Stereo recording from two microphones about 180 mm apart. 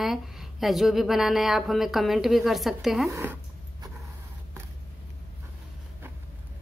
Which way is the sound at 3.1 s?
10° right (ahead or behind).